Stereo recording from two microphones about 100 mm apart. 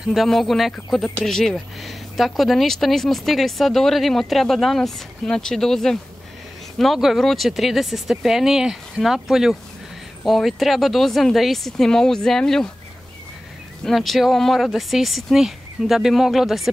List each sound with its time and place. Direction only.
0.0 s speech: centre (ahead or behind)
13.8 s speech: centre (ahead or behind)